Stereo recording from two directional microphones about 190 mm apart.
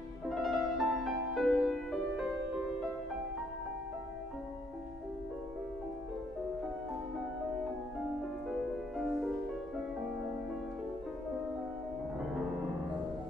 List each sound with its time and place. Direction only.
0.3 s music: centre (ahead or behind)
8.5 s music: centre (ahead or behind)